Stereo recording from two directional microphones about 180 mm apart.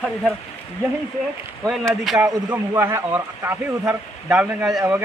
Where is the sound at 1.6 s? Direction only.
Centre (ahead or behind).